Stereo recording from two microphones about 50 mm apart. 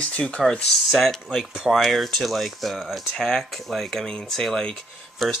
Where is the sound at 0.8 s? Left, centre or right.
Centre.